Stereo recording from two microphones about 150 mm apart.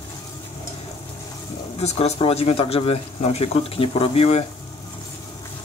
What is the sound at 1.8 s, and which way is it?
Speech, 40° left (ahead or behind).